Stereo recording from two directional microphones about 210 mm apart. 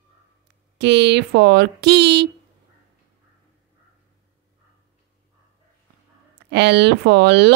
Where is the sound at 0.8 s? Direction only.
55° right (ahead or behind).